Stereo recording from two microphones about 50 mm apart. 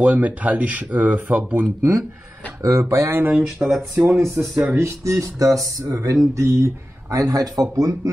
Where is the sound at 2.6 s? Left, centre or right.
Right.